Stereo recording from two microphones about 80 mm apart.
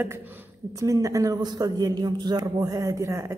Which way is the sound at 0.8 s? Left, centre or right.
Right.